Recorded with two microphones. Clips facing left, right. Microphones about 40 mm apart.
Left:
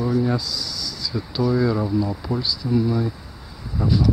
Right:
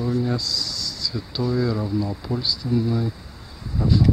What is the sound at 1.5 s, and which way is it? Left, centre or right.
Speech, centre.